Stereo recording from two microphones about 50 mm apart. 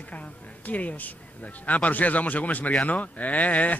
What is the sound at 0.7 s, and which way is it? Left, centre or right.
Speech, left.